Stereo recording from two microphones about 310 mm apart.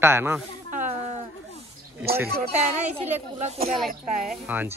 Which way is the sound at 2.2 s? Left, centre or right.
Right.